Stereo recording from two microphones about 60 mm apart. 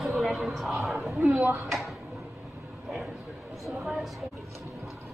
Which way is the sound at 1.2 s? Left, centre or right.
Right.